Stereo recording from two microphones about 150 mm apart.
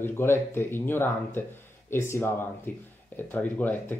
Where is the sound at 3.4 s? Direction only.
10° left (ahead or behind).